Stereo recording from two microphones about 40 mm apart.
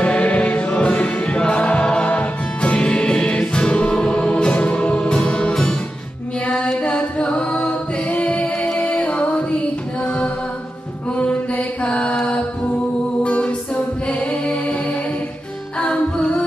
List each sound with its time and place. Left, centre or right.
0.0 s music: left
6.6 s a capella: left
8.7 s music: left
10.0 s a capella: left
11.1 s mantra: left
13.2 s a capella: left
15.8 s music: left